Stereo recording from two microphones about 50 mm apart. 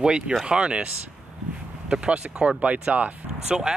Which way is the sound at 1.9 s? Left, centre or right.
Centre.